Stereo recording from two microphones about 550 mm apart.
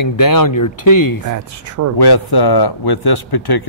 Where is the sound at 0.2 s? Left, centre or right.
Left.